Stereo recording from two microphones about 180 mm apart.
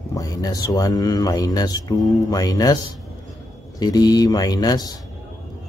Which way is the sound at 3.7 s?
20° left (ahead or behind).